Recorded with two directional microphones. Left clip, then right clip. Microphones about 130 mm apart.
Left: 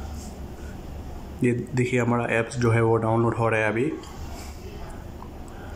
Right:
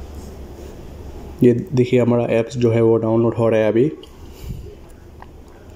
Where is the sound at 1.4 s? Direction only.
30° right (ahead or behind).